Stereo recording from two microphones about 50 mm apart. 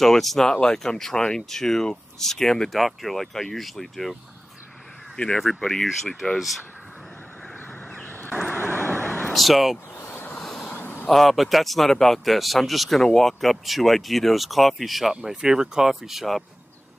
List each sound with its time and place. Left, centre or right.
0.0 s speech: centre
5.1 s speech: centre
7.9 s vehicle: left
9.2 s speech: centre
9.9 s vehicle: left
10.4 s vehicle: centre
11.1 s speech: centre